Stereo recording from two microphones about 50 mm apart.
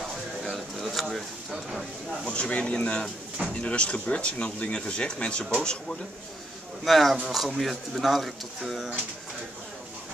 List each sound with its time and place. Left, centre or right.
0.4 s a sound: centre
1.5 s speech: centre
2.2 s speech: left
6.8 s speech: centre